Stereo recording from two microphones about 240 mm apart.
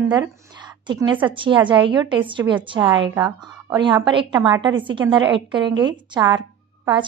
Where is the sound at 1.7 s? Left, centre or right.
Centre.